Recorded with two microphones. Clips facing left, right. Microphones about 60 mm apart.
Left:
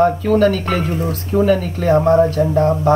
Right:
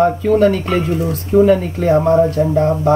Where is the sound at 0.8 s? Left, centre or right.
Left.